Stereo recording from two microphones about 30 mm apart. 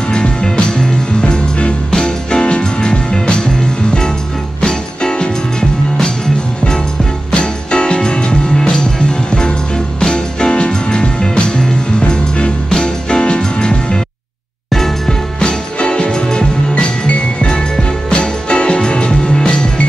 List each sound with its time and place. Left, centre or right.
0.1 s music: left
1.9 s music: left
7.3 s music: left
12.6 s music: left
15.4 s music: left
18.1 s music: left